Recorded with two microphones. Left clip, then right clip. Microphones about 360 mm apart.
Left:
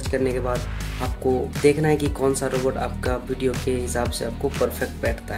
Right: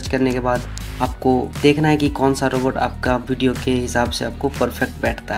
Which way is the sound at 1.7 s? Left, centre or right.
Left.